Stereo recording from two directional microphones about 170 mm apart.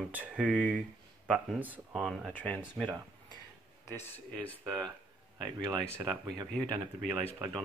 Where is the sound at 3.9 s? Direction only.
10° left (ahead or behind).